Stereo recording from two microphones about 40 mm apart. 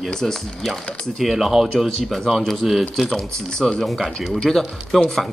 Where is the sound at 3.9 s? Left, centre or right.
Centre.